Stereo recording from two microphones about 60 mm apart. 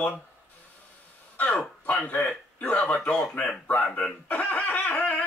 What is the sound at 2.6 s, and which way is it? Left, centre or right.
Speech, left.